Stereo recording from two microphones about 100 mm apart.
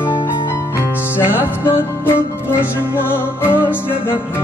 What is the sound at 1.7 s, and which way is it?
Music, 20° left (ahead or behind).